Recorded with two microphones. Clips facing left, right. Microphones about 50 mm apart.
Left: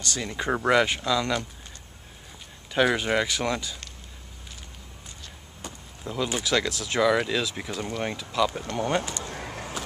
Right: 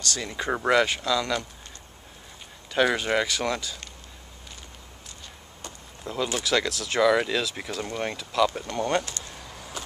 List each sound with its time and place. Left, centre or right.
0.2 s speech: centre
0.8 s speech: centre
2.7 s speech: centre
6.2 s speech: centre
9.3 s bird: left